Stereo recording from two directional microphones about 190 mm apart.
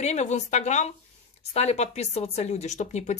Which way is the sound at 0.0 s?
35° left (ahead or behind).